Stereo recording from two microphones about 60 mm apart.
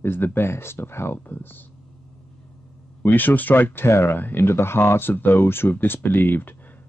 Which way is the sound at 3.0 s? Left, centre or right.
Left.